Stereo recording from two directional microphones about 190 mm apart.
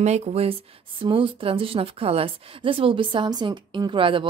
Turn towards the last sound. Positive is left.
turn(degrees=-25)  # may be behind; listen again after turning